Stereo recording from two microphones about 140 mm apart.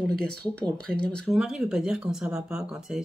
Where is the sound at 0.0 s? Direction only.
5° left (ahead or behind).